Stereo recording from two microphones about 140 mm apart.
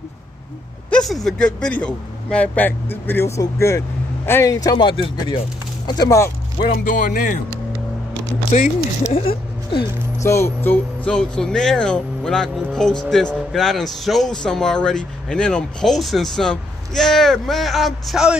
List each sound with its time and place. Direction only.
0.9 s a man's voice: centre (ahead or behind); by 5.4 s 35° left (ahead or behind)
5.9 s speech: 25° left (ahead or behind)
6.7 s speech: 70° left (ahead or behind)
8.5 s speech: 60° left (ahead or behind)
9.1 s speech: 40° left (ahead or behind)
10.2 s speech: 20° left (ahead or behind); by 18.4 s 5° right (ahead or behind)